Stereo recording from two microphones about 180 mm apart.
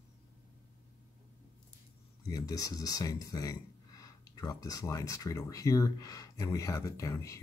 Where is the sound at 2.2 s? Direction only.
20° left (ahead or behind).